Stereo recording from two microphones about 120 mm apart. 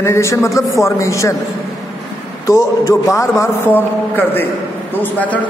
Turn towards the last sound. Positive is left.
turn(degrees=15)  # may be behind; listen again after turning